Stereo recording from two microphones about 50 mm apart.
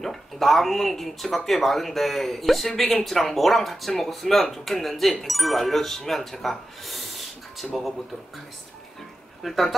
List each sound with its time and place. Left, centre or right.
0.0 s speech: centre
9.4 s speech: centre